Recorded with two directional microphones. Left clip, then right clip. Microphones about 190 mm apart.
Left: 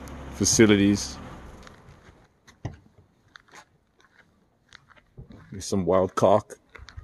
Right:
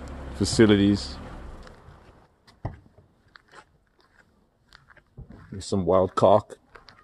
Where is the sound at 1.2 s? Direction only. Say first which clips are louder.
Even; 45° right (ahead or behind).